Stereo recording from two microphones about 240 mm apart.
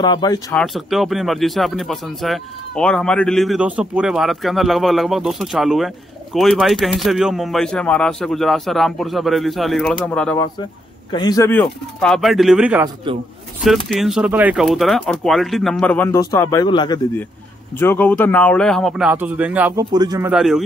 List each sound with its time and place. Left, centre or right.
0.0 s speech: centre
0.6 s speech: centre
11.1 s speech: centre
19.8 s speech: centre